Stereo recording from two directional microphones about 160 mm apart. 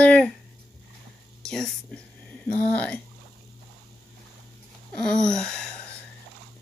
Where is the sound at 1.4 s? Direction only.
5° left (ahead or behind).